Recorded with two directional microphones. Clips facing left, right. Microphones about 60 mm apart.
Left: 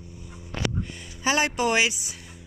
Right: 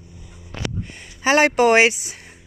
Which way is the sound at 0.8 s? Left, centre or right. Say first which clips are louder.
Right 1 dB; right.